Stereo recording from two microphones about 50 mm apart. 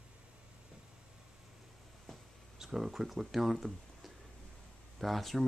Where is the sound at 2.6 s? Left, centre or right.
Centre.